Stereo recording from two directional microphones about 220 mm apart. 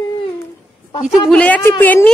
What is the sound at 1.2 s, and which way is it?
Speech, 5° left (ahead or behind).